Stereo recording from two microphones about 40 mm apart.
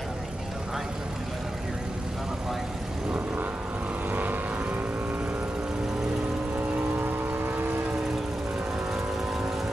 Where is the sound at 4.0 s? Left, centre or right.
Right.